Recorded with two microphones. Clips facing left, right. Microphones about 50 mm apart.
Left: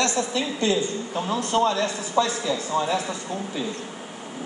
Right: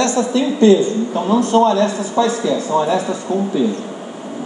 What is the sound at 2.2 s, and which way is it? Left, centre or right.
Speech, right.